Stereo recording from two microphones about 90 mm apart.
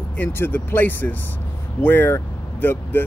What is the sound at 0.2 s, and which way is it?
Speech, 20° left (ahead or behind).